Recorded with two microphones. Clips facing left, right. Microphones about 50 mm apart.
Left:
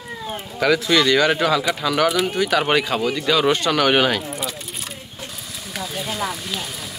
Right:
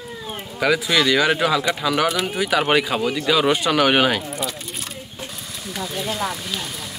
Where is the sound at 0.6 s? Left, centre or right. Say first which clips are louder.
Left 1 dB; centre.